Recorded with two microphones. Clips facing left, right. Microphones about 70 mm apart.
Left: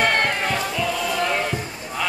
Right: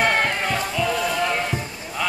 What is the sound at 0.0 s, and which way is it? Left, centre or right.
Music, centre.